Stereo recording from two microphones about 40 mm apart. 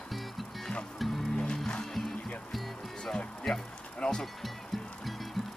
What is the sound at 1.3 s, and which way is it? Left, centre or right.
Music, centre.